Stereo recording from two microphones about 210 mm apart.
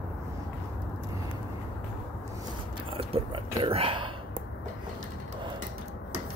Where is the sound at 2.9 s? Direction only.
25° right (ahead or behind).